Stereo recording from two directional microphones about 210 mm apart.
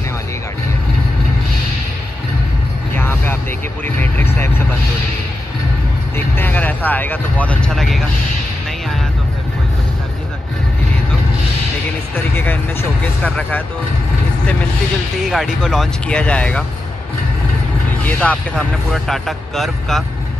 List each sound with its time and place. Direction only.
3.0 s vehicle: 10° left (ahead or behind)
3.8 s music: 10° left (ahead or behind)
6.1 s speech: 10° left (ahead or behind)
13.0 s speech: 10° left (ahead or behind)
15.2 s speech: centre (ahead or behind)
18.0 s speech: 5° left (ahead or behind)